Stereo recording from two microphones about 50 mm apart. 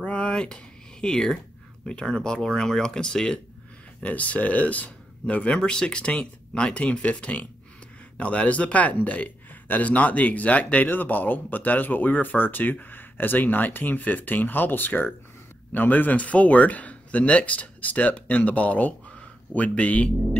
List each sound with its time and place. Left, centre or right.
0.0 s a sound: left
1.0 s speech: centre
4.0 s speech: left